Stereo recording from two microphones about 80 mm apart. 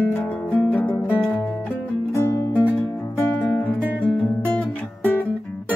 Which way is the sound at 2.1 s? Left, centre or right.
Left.